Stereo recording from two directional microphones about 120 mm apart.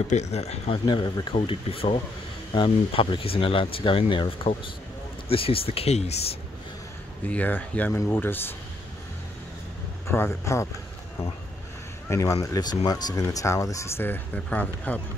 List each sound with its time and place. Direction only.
0.1 s speech: 65° left (ahead or behind)
0.8 s speech: 40° left (ahead or behind); by 6.3 s 65° left (ahead or behind)
7.2 s speech: 15° left (ahead or behind)
10.0 s speech: 20° left (ahead or behind)
12.1 s speech: 25° left (ahead or behind)